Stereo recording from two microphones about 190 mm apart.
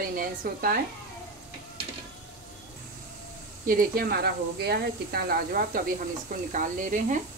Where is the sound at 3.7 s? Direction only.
50° right (ahead or behind).